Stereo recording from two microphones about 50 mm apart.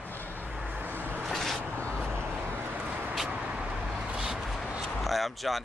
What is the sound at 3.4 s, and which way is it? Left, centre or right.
Vehicle, right.